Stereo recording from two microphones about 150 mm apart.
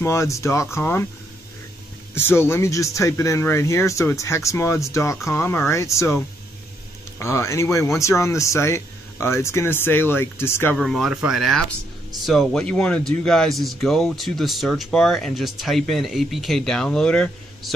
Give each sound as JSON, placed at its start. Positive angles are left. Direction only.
{"t": 0.0, "sound": "speech", "side_deg": 20}
{"t": 2.1, "sound": "speech", "side_deg": 15}
{"t": 10.8, "sound": "speech", "side_deg": 0}